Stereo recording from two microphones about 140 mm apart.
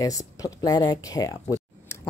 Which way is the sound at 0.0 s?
25° left (ahead or behind).